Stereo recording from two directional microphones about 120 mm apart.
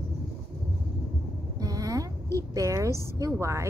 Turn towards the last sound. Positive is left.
turn(degrees=-25)  # may be behind; listen again after turning